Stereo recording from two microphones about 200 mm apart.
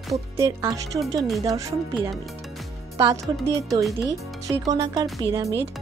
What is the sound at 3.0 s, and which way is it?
Speech, 20° right (ahead or behind).